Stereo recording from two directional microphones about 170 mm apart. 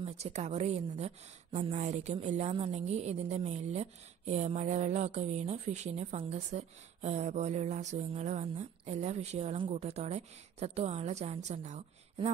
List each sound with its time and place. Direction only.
0.0 s a woman's voice: 40° right (ahead or behind)